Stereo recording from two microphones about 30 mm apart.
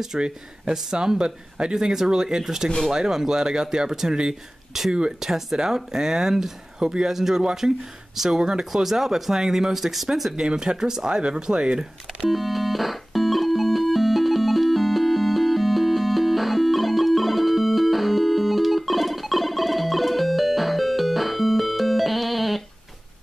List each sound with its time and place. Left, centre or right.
0.1 s speech: right
4.7 s speech: centre
8.4 s speech: right
8.7 s speech: centre
10.4 s speech: right
11.8 s speech: centre
12.3 s organ: centre